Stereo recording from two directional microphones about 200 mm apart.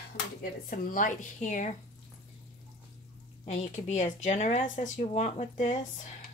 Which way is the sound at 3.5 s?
35° left (ahead or behind).